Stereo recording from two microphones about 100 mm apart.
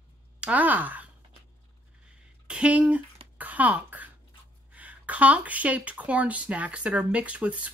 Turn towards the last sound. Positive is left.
turn(degrees=-15)  # may be behind; listen again after turning